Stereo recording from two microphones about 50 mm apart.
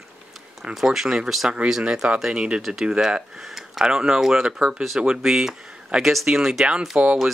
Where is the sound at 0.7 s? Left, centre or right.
Centre.